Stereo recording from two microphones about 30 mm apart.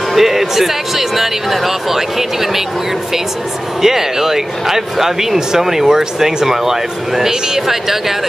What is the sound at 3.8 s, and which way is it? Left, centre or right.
Speech, centre.